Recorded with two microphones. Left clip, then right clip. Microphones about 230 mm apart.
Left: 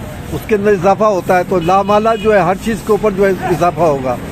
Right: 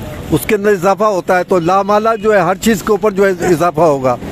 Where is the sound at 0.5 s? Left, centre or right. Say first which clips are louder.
Left 1 dB; right.